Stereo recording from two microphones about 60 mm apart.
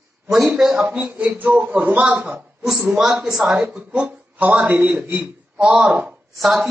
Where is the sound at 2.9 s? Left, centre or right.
Centre.